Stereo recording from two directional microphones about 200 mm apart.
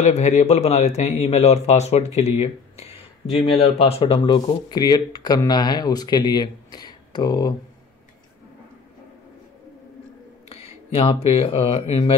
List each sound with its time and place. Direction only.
0.0 s a man's voice: 35° left (ahead or behind)
10.5 s speech: 30° left (ahead or behind)